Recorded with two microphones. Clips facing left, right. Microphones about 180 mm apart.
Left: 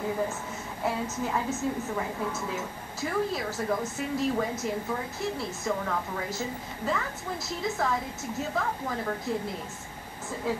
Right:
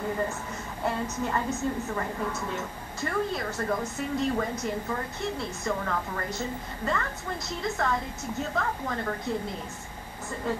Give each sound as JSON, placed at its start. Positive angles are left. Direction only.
{"t": 0.8, "sound": "a woman's voice", "side_deg": 0}